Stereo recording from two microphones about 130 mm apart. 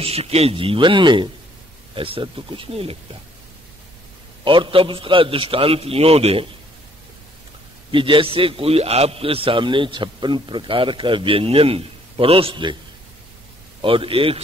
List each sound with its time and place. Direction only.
0.0 s a man's voice: 50° right (ahead or behind)
4.5 s a man's voice: 40° right (ahead or behind)
7.9 s a man's voice: 40° right (ahead or behind)
13.7 s a man's voice: 40° right (ahead or behind)